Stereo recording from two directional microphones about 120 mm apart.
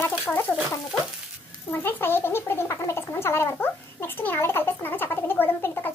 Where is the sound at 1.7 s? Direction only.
20° left (ahead or behind).